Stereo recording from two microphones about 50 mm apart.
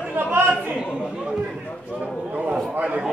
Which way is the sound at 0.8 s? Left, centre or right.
Centre.